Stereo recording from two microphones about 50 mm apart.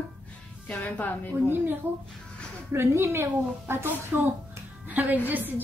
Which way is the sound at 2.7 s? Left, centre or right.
Right.